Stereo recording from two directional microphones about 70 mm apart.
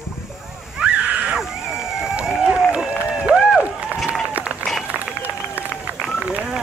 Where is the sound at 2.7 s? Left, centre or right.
Centre.